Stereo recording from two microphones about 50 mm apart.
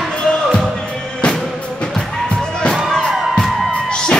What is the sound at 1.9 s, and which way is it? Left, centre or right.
Music, centre.